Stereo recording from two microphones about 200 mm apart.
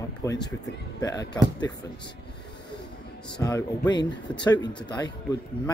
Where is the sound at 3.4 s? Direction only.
20° left (ahead or behind).